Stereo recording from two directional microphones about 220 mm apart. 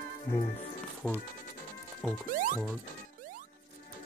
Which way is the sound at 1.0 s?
5° left (ahead or behind).